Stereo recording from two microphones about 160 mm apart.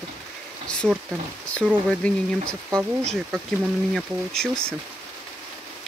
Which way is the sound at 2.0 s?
5° left (ahead or behind).